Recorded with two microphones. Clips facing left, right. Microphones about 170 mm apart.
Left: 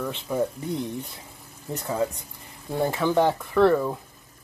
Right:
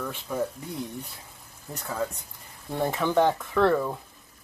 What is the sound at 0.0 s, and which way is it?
Speech, 10° left (ahead or behind).